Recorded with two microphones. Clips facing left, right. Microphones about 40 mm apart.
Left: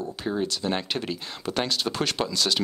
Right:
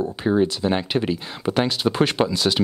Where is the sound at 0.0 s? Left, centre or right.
Right.